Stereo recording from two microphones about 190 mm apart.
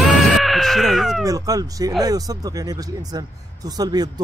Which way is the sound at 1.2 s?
20° right (ahead or behind).